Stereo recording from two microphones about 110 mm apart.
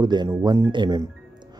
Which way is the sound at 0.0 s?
40° right (ahead or behind).